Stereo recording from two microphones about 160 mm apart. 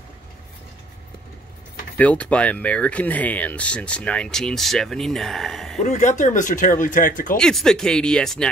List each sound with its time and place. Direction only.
2.0 s speech: 10° left (ahead or behind)
5.8 s speech: 50° left (ahead or behind)
7.3 s speech: 5° left (ahead or behind)